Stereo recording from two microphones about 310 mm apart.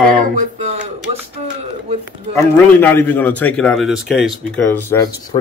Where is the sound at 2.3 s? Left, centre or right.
Centre.